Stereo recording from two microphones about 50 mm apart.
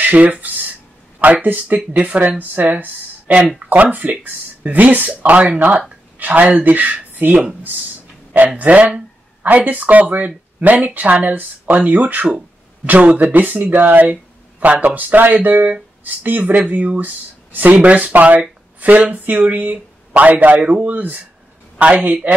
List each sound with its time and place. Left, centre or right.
0.0 s a sound: right
1.2 s speech: right
8.5 s speech: right